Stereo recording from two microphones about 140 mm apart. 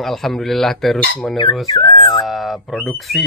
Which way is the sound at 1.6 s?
35° left (ahead or behind).